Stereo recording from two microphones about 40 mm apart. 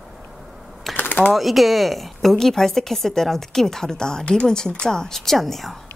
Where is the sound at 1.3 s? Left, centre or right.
Centre.